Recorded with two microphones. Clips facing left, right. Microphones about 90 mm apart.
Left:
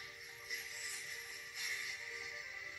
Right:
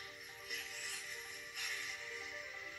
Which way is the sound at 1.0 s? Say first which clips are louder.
Right 1 dB; centre (ahead or behind).